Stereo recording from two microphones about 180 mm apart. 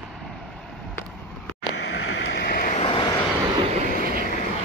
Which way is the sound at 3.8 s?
55° right (ahead or behind).